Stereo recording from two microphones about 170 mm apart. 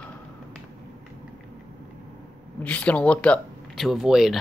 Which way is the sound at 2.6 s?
10° left (ahead or behind).